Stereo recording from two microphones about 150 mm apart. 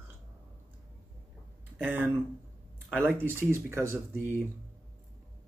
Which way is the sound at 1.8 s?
10° right (ahead or behind).